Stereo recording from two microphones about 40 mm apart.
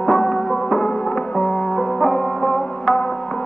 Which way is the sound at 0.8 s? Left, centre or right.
Left.